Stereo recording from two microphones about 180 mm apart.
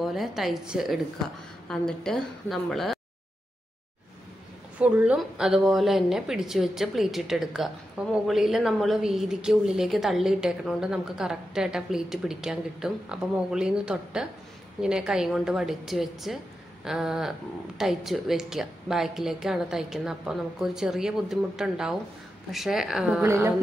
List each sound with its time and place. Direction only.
0.0 s a woman's voice: centre (ahead or behind)
4.7 s a woman's voice: 5° right (ahead or behind)
23.2 s a sound: 15° right (ahead or behind)